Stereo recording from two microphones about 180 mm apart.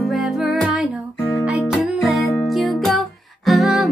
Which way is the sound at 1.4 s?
Centre (ahead or behind).